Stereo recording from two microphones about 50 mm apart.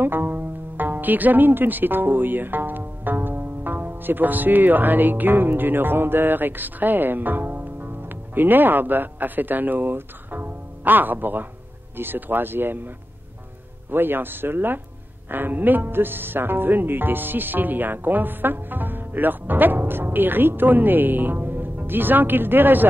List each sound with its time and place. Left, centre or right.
0.0 s speech: right